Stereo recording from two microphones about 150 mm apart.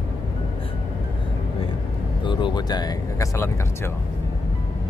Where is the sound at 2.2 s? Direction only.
30° left (ahead or behind).